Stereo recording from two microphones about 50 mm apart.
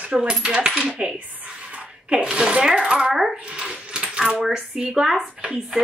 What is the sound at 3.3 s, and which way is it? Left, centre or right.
Speech, right.